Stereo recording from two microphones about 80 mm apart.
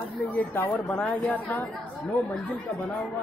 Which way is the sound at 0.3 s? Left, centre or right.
Left.